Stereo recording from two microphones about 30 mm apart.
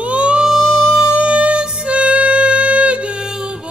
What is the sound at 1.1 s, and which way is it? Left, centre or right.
Music, right.